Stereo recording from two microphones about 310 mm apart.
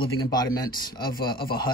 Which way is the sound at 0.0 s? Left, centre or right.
Centre.